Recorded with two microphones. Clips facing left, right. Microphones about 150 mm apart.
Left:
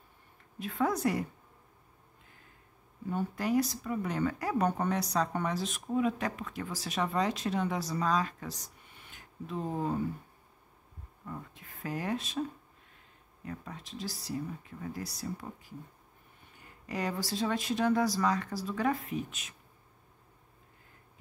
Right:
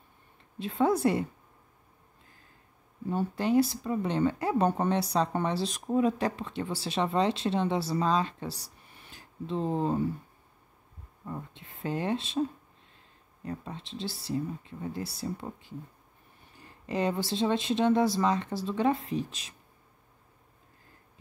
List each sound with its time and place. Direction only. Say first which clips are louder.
0.6 s speech: right 5 dB; 30° right (ahead or behind)
3.1 s speech: right 3 dB; 30° right (ahead or behind)
11.2 s speech: right 4 dB; 25° right (ahead or behind)
13.5 s speech: right 4 dB; 25° right (ahead or behind)